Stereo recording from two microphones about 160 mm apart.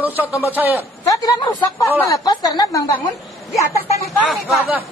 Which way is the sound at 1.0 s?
20° left (ahead or behind).